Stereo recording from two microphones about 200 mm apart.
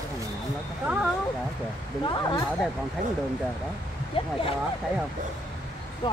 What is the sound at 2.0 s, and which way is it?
Speech, 20° left (ahead or behind).